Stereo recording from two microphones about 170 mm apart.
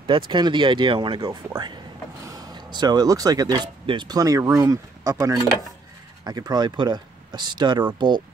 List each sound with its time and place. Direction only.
0.3 s speech: 25° right (ahead or behind)